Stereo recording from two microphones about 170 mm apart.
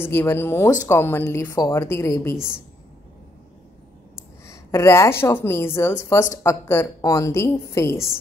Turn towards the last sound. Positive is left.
turn(degrees=15)  # may be behind; listen again after turning